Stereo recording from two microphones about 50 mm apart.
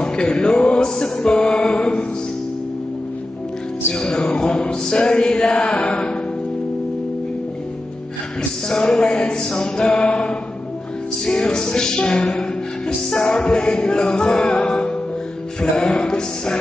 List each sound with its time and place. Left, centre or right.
0.0 s music: centre
3.9 s music: centre
8.6 s music: centre